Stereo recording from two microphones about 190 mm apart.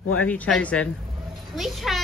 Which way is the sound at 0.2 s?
5° left (ahead or behind).